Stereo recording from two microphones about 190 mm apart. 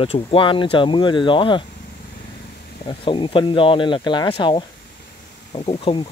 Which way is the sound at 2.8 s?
25° left (ahead or behind).